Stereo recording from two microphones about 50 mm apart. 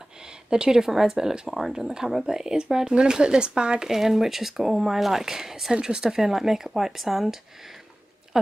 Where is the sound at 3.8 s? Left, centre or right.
Centre.